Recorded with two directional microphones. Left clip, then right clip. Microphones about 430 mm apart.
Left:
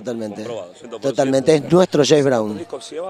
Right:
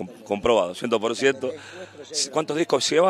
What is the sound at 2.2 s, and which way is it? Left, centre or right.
Speech, right.